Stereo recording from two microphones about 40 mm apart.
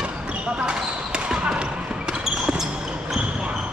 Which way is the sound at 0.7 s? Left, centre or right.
Right.